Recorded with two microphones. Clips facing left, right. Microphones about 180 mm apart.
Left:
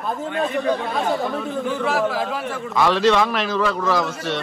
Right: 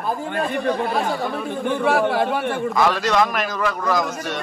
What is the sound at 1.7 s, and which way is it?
A man's voice, 55° right (ahead or behind).